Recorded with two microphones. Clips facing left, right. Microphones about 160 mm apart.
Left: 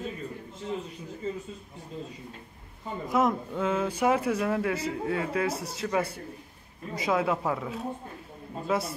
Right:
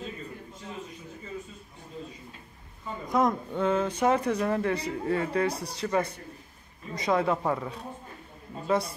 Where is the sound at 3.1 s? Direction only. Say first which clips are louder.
Even; 5° left (ahead or behind).